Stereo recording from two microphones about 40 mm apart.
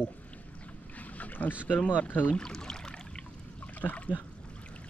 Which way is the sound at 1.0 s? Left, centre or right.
Left.